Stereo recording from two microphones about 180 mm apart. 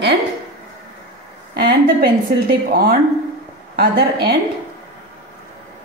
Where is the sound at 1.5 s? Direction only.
60° right (ahead or behind).